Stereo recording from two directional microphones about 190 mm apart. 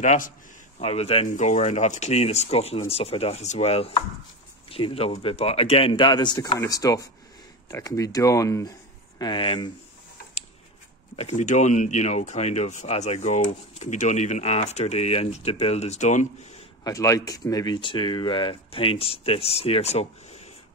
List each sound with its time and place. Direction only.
0.0 s speech: 40° left (ahead or behind); by 9.7 s 25° left (ahead or behind)
11.1 s speech: 35° left (ahead or behind)
16.8 s speech: 15° left (ahead or behind); by 20.4 s 35° left (ahead or behind)